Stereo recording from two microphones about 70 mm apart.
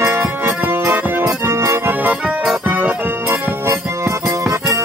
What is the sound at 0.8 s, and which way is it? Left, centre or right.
Music, right.